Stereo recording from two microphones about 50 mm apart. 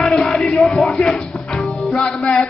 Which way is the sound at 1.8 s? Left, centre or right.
Centre.